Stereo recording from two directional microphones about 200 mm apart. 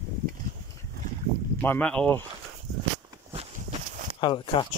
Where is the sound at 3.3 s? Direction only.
35° right (ahead or behind).